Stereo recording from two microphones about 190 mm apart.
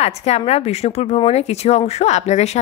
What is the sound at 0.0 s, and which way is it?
Speech, 35° left (ahead or behind).